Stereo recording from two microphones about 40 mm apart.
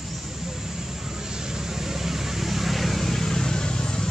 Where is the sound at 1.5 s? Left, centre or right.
Centre.